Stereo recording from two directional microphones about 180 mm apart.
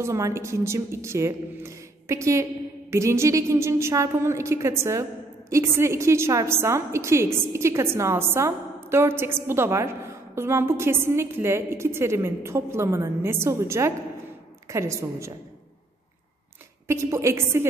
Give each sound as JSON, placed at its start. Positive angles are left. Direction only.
{"t": 0.0, "sound": "a woman's voice", "side_deg": -15}
{"t": 16.8, "sound": "a woman's voice", "side_deg": -15}